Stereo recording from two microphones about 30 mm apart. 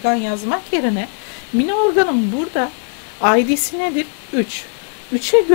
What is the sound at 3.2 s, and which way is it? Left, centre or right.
Speech, left.